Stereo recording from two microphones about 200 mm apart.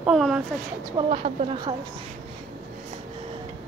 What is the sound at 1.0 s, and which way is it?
Speech, 20° right (ahead or behind).